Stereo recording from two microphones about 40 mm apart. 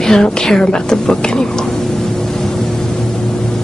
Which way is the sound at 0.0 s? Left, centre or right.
Centre.